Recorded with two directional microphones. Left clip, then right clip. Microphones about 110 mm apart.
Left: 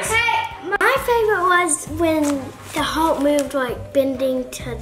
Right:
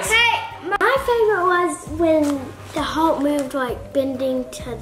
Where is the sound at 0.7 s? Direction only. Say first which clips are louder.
Even; 5° left (ahead or behind).